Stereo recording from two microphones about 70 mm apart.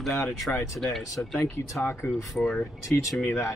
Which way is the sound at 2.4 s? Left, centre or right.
Centre.